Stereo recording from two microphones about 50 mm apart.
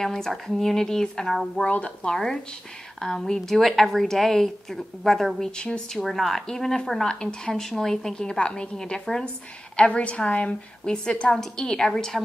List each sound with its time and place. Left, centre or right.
0.0 s a woman's voice: centre